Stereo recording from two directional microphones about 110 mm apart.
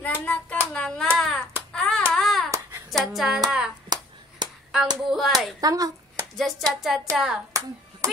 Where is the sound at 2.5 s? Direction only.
25° right (ahead or behind).